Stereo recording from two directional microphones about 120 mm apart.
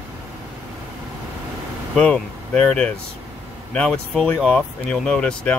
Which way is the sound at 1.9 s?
10° left (ahead or behind).